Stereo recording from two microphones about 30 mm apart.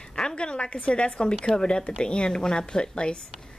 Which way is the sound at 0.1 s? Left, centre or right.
Left.